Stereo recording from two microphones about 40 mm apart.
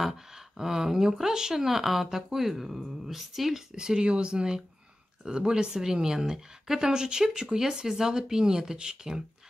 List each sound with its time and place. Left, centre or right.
0.6 s speech: centre
3.7 s speech: centre